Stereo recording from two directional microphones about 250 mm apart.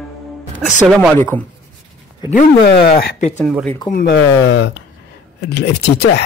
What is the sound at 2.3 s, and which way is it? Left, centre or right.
Speech, left.